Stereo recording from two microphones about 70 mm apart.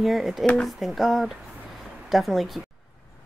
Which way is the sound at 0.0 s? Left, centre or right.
Centre.